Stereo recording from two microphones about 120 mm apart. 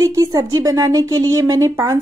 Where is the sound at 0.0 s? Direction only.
30° right (ahead or behind).